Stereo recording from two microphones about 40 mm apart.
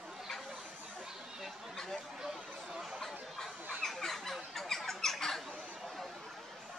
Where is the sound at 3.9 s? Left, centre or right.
Centre.